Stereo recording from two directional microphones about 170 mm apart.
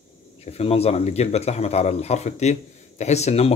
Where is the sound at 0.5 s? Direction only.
35° left (ahead or behind).